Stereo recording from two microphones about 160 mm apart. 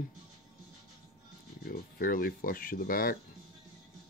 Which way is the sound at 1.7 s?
65° left (ahead or behind).